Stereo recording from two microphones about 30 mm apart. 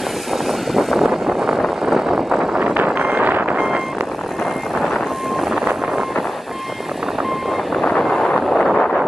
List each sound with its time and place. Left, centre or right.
0.9 s vehicle: centre
1.9 s vehicle: centre
2.7 s vehicle: right
8.5 s wind noise: centre